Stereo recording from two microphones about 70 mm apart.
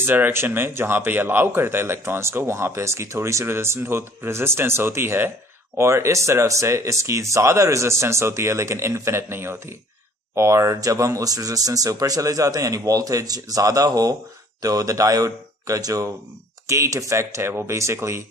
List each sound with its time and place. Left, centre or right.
0.0 s speech: right